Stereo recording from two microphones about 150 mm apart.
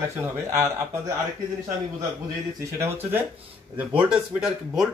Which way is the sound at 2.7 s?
15° right (ahead or behind).